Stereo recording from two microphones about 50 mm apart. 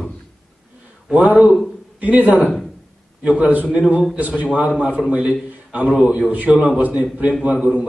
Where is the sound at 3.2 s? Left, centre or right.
Right.